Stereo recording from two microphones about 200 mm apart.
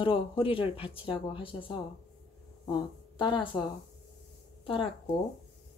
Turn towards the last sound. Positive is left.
turn(degrees=25)  # may be behind; listen again after turning